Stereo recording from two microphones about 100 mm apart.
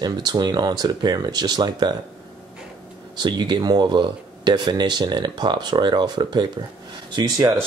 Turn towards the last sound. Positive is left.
turn(degrees=-35)  # may be behind; listen again after turning